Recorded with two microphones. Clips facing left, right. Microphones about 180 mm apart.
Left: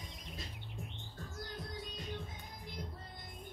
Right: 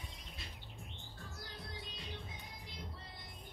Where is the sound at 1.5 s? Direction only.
45° left (ahead or behind).